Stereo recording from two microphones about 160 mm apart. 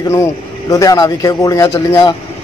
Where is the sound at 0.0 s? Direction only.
20° left (ahead or behind).